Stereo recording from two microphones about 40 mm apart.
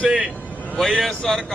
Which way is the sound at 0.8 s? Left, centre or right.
Centre.